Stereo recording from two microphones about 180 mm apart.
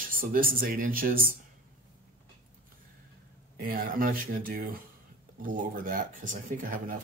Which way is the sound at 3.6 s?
50° right (ahead or behind).